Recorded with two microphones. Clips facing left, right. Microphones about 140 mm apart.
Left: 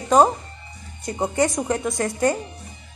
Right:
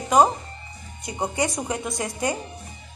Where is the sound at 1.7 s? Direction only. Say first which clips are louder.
Left 5 dB; 20° right (ahead or behind).